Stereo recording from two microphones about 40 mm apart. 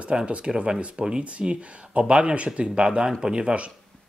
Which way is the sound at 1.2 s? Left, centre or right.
Right.